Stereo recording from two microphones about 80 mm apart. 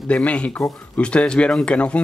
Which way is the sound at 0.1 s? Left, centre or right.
Centre.